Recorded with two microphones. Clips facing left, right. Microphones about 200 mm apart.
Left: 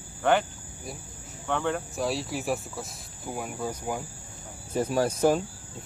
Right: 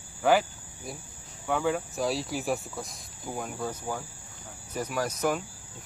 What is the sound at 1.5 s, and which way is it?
Speech, 5° right (ahead or behind).